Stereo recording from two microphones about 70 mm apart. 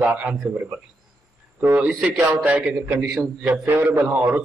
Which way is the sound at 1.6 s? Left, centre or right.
Right.